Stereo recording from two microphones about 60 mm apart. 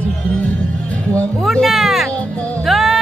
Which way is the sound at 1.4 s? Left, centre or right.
Centre.